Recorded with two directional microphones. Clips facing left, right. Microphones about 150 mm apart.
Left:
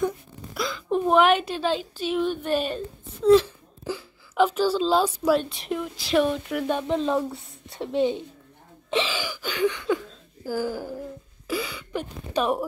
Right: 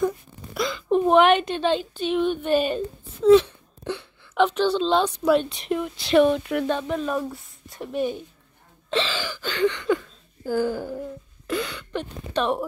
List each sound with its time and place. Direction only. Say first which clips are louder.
0.6 s a woman's voice: right 4 dB; centre (ahead or behind)
6.7 s a woman's voice: left 6 dB; 20° left (ahead or behind)
8.9 s speech: even; 10° left (ahead or behind)